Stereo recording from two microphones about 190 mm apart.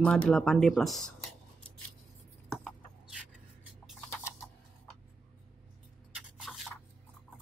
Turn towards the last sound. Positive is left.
turn(degrees=0)  # may be behind; listen again after turning